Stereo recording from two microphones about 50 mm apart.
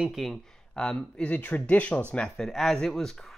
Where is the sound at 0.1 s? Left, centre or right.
Centre.